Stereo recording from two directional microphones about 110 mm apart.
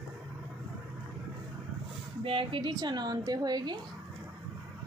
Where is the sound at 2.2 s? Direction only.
50° right (ahead or behind).